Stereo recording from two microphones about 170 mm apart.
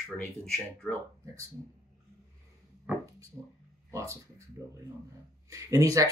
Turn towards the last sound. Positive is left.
turn(degrees=-20)  # may be behind; listen again after turning